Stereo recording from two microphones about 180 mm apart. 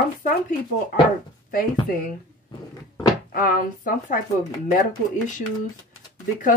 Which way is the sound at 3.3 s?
50° left (ahead or behind).